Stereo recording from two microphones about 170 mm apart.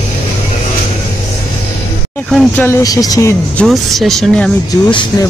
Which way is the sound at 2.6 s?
20° left (ahead or behind).